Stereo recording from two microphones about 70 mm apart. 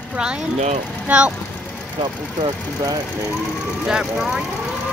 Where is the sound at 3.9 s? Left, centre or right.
Centre.